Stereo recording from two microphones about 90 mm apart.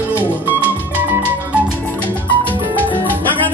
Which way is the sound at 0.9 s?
20° right (ahead or behind).